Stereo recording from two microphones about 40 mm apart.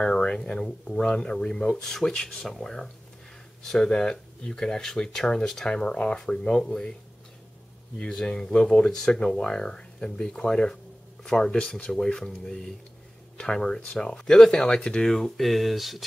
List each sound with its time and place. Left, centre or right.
0.0 s a sound: left
0.4 s speech: centre
8.0 s speech: centre